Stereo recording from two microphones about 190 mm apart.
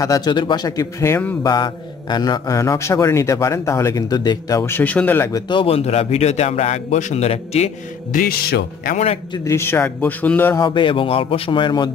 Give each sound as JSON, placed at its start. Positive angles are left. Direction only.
{"t": 0.0, "sound": "a man's voice", "side_deg": 20}
{"t": 5.5, "sound": "speech", "side_deg": 30}
{"t": 8.2, "sound": "speech", "side_deg": 50}
{"t": 8.9, "sound": "speech", "side_deg": 35}
{"t": 9.4, "sound": "a man's voice", "side_deg": 15}
{"t": 10.7, "sound": "a man's voice", "side_deg": 25}